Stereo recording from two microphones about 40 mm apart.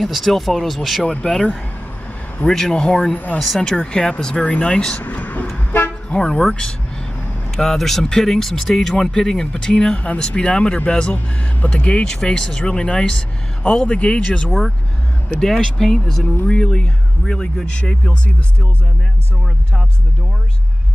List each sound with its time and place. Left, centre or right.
0.0 s speech: centre
1.2 s speech: centre
3.3 s speech: centre
3.7 s speech: left
5.0 s vehicle: left
5.9 s toot: left
7.5 s speech: centre
9.9 s speech: left
11.6 s speech: left
12.0 s speech: centre
12.6 s speech: left
15.4 s speech: centre
16.4 s speech: left